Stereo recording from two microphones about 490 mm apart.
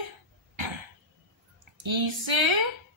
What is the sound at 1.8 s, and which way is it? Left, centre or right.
Speech, right.